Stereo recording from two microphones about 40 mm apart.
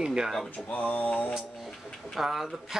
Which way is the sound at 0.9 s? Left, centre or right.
Left.